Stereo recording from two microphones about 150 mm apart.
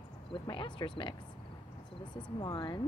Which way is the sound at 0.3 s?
30° left (ahead or behind).